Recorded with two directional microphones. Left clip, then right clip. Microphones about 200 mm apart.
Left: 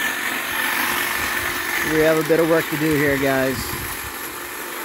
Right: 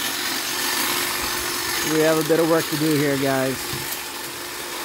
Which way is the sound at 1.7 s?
35° left (ahead or behind).